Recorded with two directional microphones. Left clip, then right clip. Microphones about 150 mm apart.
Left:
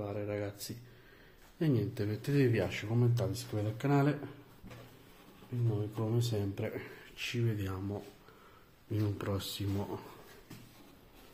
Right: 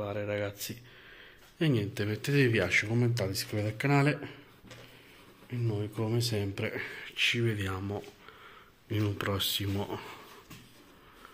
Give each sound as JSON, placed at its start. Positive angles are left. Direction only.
{"t": 0.0, "sound": "a sound", "side_deg": -15}
{"t": 1.6, "sound": "speech", "side_deg": -10}
{"t": 5.5, "sound": "speech", "side_deg": -20}
{"t": 8.9, "sound": "speech", "side_deg": -5}